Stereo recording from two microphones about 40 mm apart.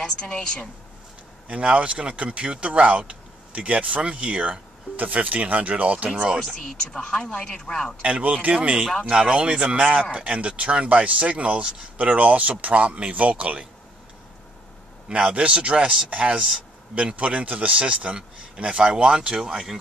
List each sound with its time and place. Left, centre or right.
0.0 s a woman's voice: left
1.7 s speech: right
4.9 s speech: right
7.1 s a woman's voice: centre
8.0 s speech: right
8.8 s a woman's voice: centre
9.1 s speech: right
15.0 s speech: right